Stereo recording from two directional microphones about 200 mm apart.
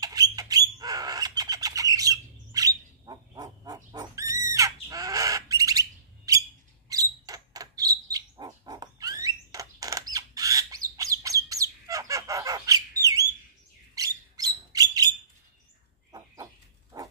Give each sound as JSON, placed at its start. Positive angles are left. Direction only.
{"t": 0.0, "sound": "bird", "side_deg": -20}
{"t": 6.9, "sound": "dog", "side_deg": -20}
{"t": 13.9, "sound": "mouse", "side_deg": -20}
{"t": 16.1, "sound": "a sound", "side_deg": -20}